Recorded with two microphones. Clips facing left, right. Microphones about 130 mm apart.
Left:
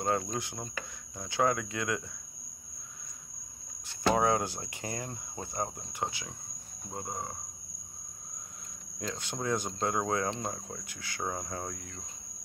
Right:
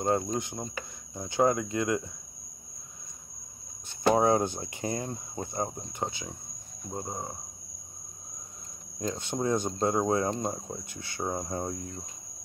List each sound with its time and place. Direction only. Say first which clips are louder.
0.0 s speech: right 4 dB; 20° right (ahead or behind)
4.1 s speech: right 4 dB; 25° right (ahead or behind)
9.1 s speech: right 4 dB; 25° right (ahead or behind)